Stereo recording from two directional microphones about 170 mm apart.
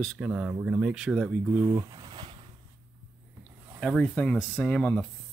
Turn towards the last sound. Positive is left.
turn(degrees=5)  # may be behind; listen again after turning